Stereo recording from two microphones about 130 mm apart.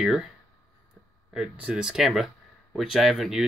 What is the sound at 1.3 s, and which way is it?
Speech, 5° right (ahead or behind).